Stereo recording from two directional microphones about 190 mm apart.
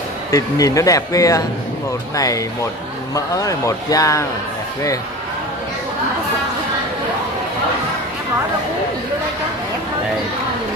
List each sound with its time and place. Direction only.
0.3 s speech: 15° left (ahead or behind)